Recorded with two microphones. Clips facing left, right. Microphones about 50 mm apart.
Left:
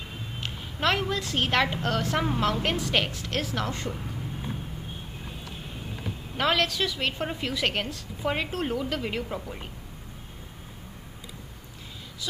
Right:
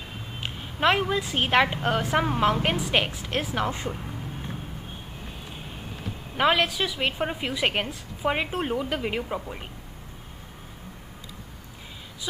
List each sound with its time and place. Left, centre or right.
0.4 s a woman's voice: centre
6.3 s a woman's voice: centre